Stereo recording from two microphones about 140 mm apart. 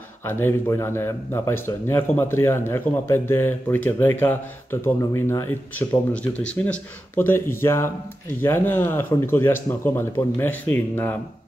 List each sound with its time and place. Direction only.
0.2 s speech: 15° left (ahead or behind)